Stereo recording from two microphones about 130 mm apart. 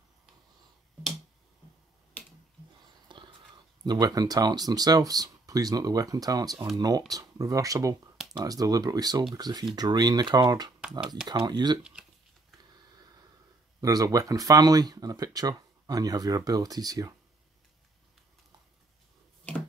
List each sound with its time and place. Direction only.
3.1 s a sound: 40° right (ahead or behind)
3.8 s speech: 30° right (ahead or behind)
10.8 s computer keyboard: 5° right (ahead or behind)
11.2 s speech: 35° right (ahead or behind)
11.8 s a sound: 5° right (ahead or behind)
13.7 s speech: 25° right (ahead or behind)